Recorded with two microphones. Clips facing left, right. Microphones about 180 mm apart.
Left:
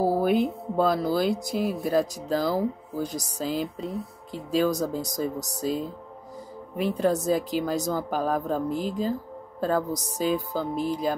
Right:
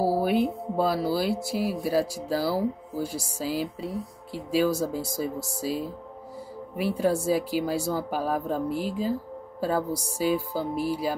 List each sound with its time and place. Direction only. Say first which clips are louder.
0.0 s speech: left 1 dB; 5° right (ahead or behind)